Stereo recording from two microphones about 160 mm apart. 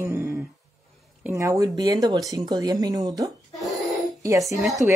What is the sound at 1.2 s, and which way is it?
Speech, 20° right (ahead or behind).